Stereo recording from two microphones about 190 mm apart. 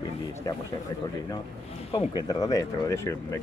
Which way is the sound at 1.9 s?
20° left (ahead or behind).